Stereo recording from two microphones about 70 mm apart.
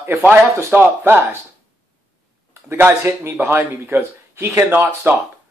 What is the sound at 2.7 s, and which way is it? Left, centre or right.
Speech, right.